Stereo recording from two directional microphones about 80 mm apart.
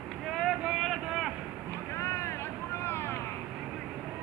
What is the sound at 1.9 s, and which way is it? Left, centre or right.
Vehicle, left.